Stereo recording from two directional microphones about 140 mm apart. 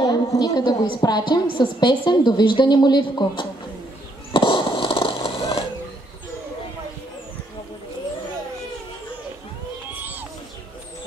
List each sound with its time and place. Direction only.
0.0 s a woman's voice: 30° left (ahead or behind)
4.3 s fireworks: 40° left (ahead or behind)